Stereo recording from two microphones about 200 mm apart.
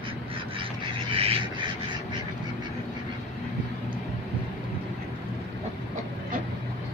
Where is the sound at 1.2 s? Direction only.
30° right (ahead or behind).